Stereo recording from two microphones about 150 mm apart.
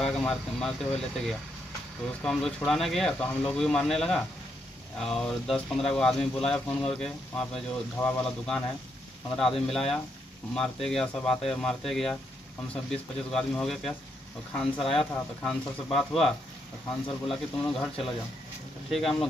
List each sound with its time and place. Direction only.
0.0 s speech: 5° left (ahead or behind)
18.9 s speech: centre (ahead or behind)